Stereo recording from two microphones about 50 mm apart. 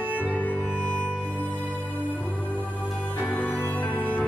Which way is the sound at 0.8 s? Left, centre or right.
Left.